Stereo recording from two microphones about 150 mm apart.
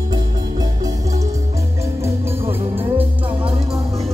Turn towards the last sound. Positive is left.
turn(degrees=-15)  # may be behind; listen again after turning